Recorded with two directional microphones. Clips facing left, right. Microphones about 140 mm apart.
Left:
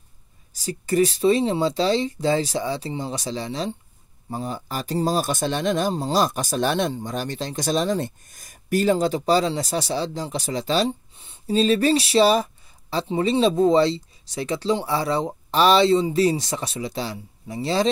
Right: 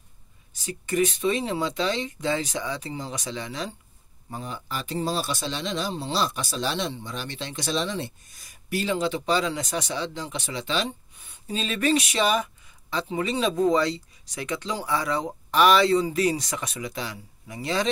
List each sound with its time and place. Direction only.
0.5 s speech: 35° left (ahead or behind)